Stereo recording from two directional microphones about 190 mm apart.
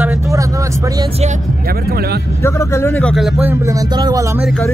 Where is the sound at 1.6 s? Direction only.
50° right (ahead or behind).